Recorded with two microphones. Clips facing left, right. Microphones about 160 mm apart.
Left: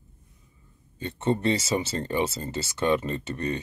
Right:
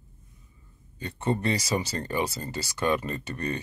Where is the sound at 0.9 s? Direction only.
25° left (ahead or behind).